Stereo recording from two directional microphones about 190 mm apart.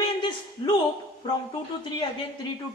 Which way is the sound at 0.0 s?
25° left (ahead or behind).